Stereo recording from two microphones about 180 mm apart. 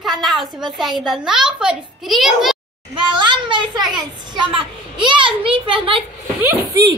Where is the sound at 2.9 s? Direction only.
25° right (ahead or behind).